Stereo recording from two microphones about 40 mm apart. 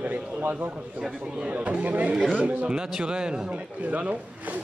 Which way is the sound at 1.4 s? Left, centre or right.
Right.